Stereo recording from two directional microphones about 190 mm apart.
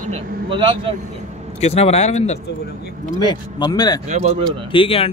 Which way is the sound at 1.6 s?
35° left (ahead or behind).